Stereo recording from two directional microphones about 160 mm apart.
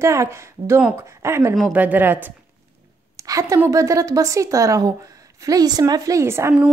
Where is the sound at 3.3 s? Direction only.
20° right (ahead or behind).